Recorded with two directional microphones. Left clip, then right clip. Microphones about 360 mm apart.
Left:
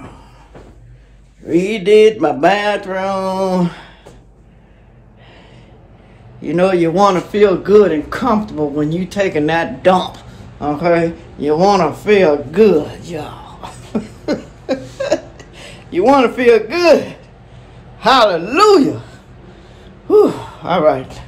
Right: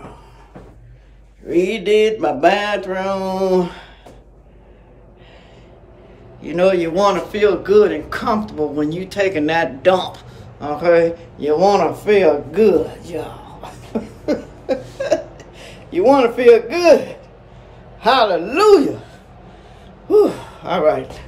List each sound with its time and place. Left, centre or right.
1.5 s mantra: centre
6.4 s a man's voice: centre
20.6 s speech: centre